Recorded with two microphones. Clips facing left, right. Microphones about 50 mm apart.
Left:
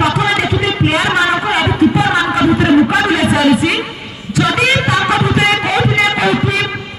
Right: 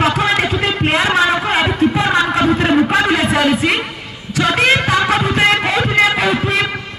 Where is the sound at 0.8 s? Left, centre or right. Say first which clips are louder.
Even; right.